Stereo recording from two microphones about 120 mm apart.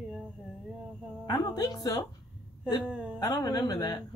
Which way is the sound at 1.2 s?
35° left (ahead or behind).